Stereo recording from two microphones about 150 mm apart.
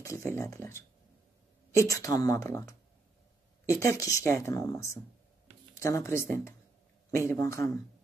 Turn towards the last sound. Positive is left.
turn(degrees=20)  # may be behind; listen again after turning